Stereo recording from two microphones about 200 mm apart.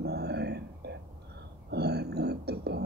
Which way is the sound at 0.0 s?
55° right (ahead or behind).